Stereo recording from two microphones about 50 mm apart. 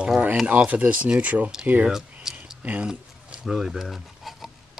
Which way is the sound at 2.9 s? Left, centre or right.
Centre.